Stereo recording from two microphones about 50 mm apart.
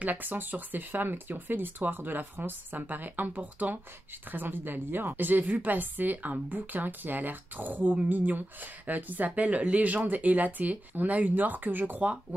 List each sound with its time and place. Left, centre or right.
0.0 s a woman's voice: right
4.3 s a woman's voice: right